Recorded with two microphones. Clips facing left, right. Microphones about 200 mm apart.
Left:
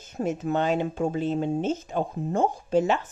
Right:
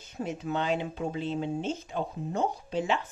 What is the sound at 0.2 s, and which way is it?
Speech, 45° left (ahead or behind).